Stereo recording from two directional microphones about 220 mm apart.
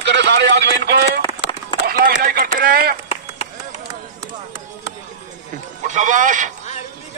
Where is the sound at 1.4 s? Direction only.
55° left (ahead or behind).